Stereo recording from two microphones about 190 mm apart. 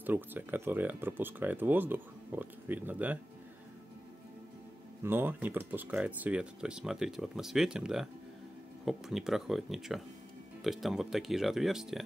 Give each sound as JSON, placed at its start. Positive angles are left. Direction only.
{"t": 0.0, "sound": "speech", "side_deg": -10}
{"t": 5.0, "sound": "speech", "side_deg": -10}